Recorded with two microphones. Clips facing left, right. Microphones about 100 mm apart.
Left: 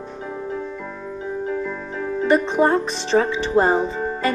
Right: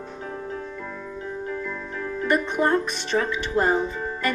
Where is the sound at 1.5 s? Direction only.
15° left (ahead or behind).